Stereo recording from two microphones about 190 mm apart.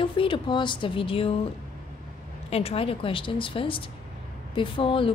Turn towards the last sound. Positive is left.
turn(degrees=25)  # may be behind; listen again after turning